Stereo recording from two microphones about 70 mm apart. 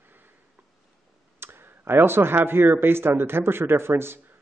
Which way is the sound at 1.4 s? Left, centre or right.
Right.